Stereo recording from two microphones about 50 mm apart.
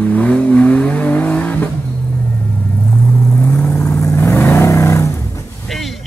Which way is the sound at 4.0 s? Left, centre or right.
Left.